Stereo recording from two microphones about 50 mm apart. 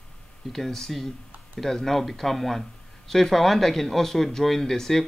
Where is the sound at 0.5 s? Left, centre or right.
Centre.